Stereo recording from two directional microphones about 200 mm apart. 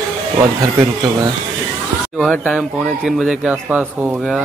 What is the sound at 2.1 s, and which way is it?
Speech, 5° left (ahead or behind).